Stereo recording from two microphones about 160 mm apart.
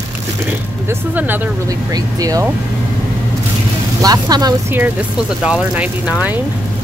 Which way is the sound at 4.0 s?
25° right (ahead or behind).